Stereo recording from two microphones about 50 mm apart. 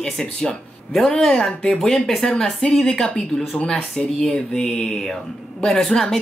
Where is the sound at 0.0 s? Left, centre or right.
Centre.